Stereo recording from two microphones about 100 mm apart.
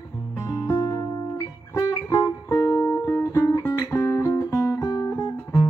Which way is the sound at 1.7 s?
30° left (ahead or behind).